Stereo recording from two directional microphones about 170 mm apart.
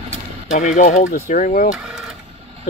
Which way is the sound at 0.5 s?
45° left (ahead or behind).